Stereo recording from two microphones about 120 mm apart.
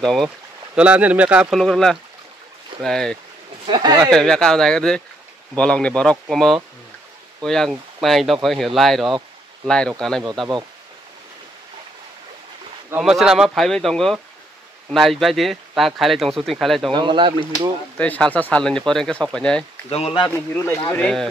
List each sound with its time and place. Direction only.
0.0 s speech: 5° left (ahead or behind)
0.7 s speech: 10° right (ahead or behind)
1.6 s speech: 5° left (ahead or behind)
3.6 s speech: 40° right (ahead or behind)
4.1 s speech: 5° left (ahead or behind)
13.0 s speech: 5° right (ahead or behind)
16.9 s speech: 40° right (ahead or behind)
17.9 s speech: 10° left (ahead or behind)
20.2 s speech: 15° left (ahead or behind)
20.9 s speech: 5° left (ahead or behind)